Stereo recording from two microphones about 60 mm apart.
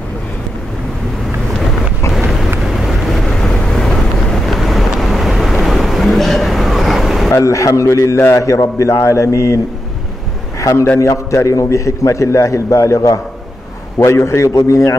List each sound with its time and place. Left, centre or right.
2.7 s vehicle: centre
3.3 s vehicle: centre
7.4 s a man's voice: left
10.6 s a man's voice: left
14.0 s a man's voice: left